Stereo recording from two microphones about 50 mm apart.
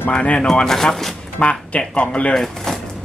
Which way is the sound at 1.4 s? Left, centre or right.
Left.